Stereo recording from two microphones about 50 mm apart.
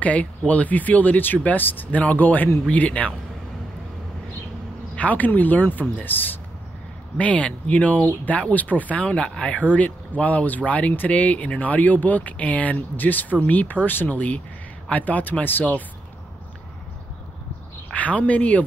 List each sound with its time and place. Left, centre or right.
0.0 s speech: left
4.9 s speech: left
7.2 s speech: left
17.9 s speech: left